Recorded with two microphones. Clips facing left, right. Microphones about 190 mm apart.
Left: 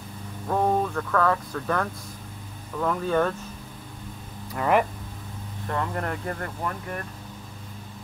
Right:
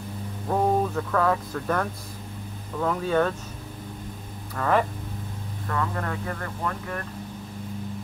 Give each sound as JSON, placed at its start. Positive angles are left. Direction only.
{"t": 0.5, "sound": "speech", "side_deg": -5}
{"t": 4.6, "sound": "speech", "side_deg": 15}
{"t": 5.7, "sound": "speech", "side_deg": 30}